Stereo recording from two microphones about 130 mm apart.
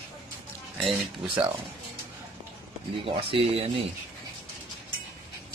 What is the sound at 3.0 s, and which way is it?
Speech, 45° right (ahead or behind).